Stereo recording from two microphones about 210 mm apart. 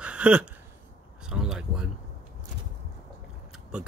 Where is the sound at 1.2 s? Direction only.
5° right (ahead or behind).